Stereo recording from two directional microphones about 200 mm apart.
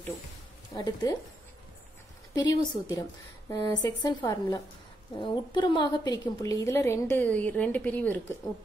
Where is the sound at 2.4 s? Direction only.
20° left (ahead or behind).